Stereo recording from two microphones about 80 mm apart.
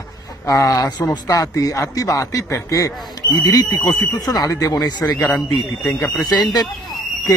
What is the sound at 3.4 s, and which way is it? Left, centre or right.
Speech, left.